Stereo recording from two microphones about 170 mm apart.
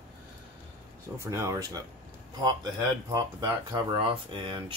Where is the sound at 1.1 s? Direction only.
15° right (ahead or behind).